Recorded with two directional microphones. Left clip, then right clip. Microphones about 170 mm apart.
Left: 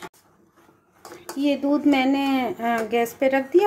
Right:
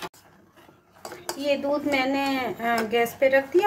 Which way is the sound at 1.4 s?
55° left (ahead or behind).